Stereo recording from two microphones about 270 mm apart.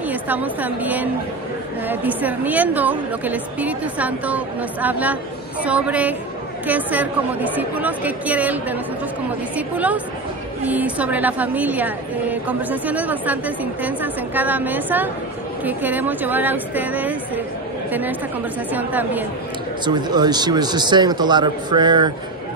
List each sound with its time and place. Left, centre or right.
0.0 s a woman's voice: centre
18.7 s speech: centre